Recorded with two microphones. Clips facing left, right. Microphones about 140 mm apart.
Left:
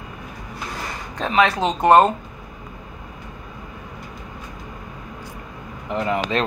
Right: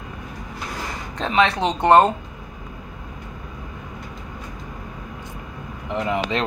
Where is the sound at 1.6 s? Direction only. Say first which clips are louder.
Left 1 dB; 25° right (ahead or behind).